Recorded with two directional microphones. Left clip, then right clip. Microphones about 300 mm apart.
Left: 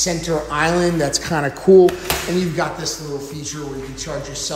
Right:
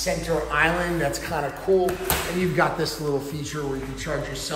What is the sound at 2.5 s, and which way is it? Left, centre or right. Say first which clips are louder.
Speech: even; centre.